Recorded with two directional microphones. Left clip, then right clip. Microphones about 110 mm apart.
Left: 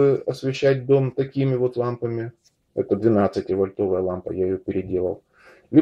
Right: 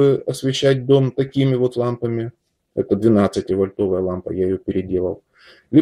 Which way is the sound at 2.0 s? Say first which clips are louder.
Right 4 dB; 25° right (ahead or behind).